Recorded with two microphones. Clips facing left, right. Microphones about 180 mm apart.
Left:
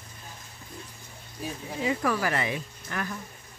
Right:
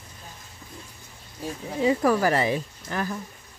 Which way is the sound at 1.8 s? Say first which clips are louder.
Right 6 dB; 35° right (ahead or behind).